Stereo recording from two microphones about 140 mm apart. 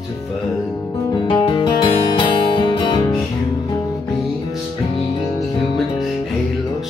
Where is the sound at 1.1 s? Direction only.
35° left (ahead or behind).